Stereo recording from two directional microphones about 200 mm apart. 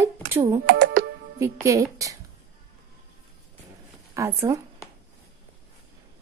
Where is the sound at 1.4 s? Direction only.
15° right (ahead or behind).